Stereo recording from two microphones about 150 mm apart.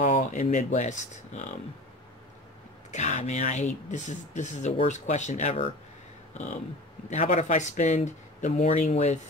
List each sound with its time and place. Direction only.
0.0 s speech: 55° left (ahead or behind)
2.9 s speech: 50° left (ahead or behind)